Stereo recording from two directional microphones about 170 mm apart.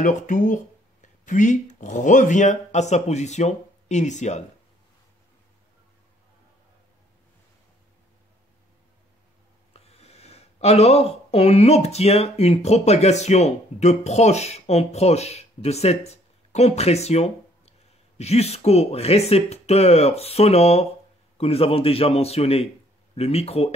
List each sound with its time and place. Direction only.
0.0 s speech: 45° left (ahead or behind)
9.8 s a man's voice: 40° left (ahead or behind)